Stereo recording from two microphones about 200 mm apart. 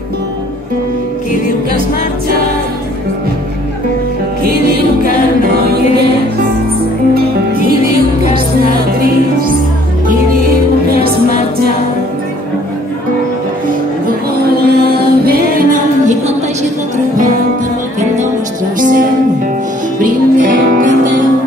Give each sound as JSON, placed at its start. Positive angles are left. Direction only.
{"t": 7.2, "sound": "music", "side_deg": -45}
{"t": 14.7, "sound": "music", "side_deg": -50}
{"t": 18.8, "sound": "music", "side_deg": -40}